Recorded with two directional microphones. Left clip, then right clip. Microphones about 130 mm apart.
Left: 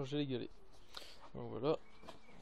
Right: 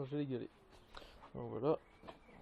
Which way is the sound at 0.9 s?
Centre (ahead or behind).